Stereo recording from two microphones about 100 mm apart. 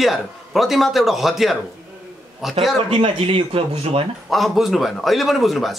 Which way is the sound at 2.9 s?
65° right (ahead or behind).